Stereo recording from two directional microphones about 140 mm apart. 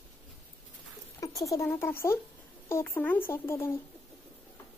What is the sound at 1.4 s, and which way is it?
Speech, 20° left (ahead or behind).